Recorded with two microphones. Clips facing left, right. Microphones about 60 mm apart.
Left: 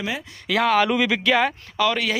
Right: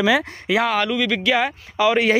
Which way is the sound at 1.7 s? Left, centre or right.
Centre.